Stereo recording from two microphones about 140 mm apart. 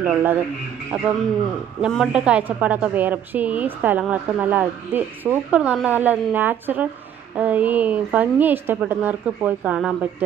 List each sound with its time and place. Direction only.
0.0 s a woman's voice: 15° right (ahead or behind)
1.8 s a woman's voice: 5° right (ahead or behind)